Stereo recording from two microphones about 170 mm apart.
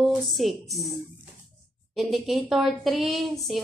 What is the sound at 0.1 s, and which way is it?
Speech, centre (ahead or behind).